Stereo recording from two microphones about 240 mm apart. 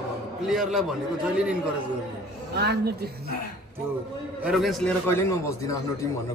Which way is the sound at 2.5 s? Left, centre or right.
Right.